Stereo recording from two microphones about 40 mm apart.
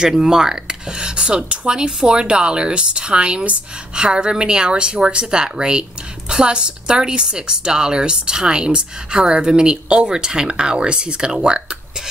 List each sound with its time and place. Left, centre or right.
0.0 s speech: centre